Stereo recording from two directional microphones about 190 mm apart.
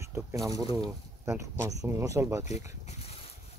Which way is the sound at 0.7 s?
15° right (ahead or behind).